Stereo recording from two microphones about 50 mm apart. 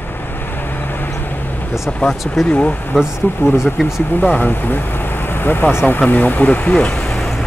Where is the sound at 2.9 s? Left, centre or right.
Centre.